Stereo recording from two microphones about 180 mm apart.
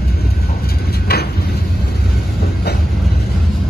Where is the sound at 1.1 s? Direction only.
60° left (ahead or behind).